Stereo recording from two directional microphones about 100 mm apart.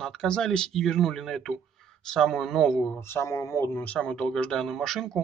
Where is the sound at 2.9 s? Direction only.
25° left (ahead or behind).